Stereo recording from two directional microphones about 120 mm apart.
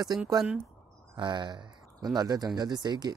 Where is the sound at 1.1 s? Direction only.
40° right (ahead or behind).